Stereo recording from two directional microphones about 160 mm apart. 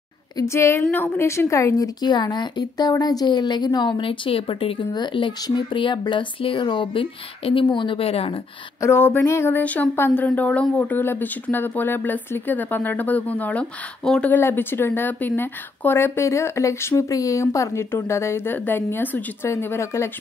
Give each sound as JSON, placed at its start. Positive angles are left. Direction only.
{"t": 0.4, "sound": "a woman's voice", "side_deg": 15}
{"t": 8.8, "sound": "speech", "side_deg": 15}